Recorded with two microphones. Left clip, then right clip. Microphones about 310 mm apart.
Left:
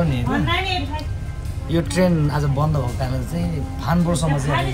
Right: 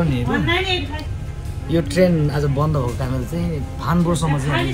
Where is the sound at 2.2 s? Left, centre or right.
Centre.